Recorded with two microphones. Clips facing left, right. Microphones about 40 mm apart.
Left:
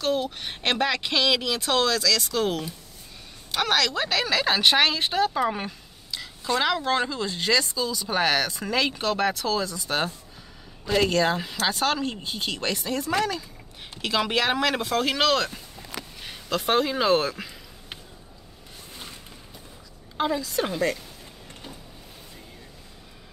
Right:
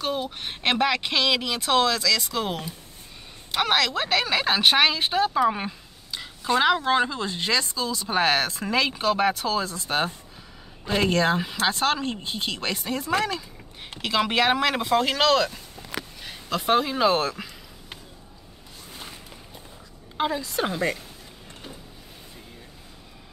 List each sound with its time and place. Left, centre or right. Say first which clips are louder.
0.0 s speech: left 2 dB; centre
6.1 s speech: right 3 dB; centre
14.0 s speech: right 2 dB; centre
20.2 s speech: even; centre